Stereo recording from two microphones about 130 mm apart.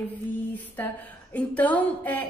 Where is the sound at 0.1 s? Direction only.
15° left (ahead or behind).